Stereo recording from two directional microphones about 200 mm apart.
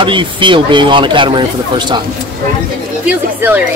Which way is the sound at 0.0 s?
25° right (ahead or behind).